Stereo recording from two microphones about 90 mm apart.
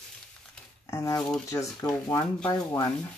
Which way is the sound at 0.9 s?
35° left (ahead or behind).